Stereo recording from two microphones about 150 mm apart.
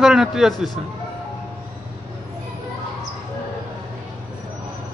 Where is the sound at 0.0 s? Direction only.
5° right (ahead or behind).